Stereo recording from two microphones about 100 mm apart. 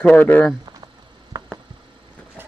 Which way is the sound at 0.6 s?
45° right (ahead or behind).